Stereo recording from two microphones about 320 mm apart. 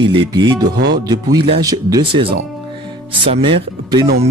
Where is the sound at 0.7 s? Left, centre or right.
Right.